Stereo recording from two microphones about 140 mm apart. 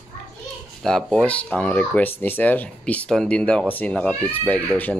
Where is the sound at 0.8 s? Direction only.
5° left (ahead or behind).